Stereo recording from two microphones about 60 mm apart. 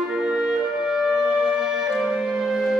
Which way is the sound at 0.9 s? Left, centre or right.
Centre.